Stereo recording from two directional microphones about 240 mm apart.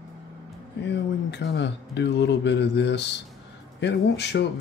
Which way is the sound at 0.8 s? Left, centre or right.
Left.